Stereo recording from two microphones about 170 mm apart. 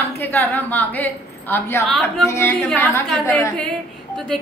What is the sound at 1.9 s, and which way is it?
Speech, centre (ahead or behind).